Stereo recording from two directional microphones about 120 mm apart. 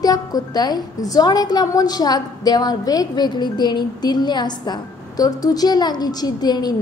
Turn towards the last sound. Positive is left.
turn(degrees=35)  # may be behind; listen again after turning